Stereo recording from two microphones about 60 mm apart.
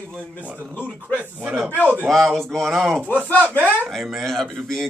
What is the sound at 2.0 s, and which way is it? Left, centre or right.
Speech, centre.